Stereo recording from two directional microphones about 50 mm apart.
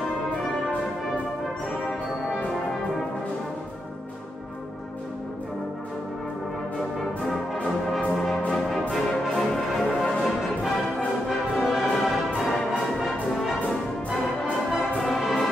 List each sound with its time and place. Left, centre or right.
8.1 s brass instrument: centre
9.2 s music: centre
14.7 s brass instrument: centre